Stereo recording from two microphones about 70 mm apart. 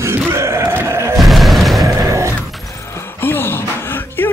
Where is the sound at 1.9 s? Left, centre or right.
Right.